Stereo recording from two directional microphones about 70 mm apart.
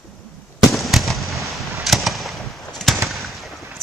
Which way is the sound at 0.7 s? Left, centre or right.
Centre.